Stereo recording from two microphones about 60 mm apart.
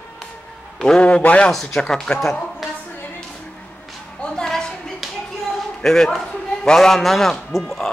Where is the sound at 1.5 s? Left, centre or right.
Centre.